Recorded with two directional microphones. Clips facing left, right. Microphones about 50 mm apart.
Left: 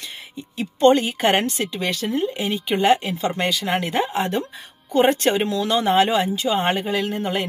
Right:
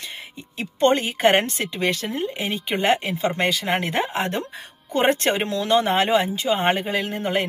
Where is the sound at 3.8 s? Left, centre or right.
Right.